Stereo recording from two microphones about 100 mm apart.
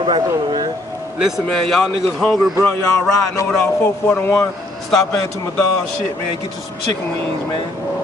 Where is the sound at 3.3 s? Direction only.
25° left (ahead or behind).